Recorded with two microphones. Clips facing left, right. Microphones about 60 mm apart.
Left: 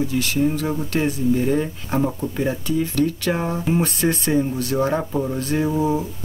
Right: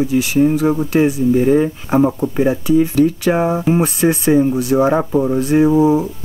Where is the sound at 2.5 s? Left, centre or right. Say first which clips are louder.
Right 8 dB; centre.